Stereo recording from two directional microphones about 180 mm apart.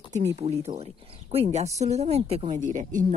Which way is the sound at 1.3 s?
35° right (ahead or behind).